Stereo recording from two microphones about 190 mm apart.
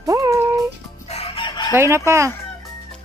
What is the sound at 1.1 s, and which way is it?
Chicken, 30° left (ahead or behind).